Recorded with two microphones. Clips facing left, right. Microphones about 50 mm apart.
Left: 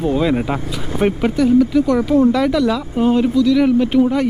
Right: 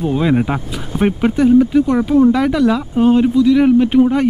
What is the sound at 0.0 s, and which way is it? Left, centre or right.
Speech, centre.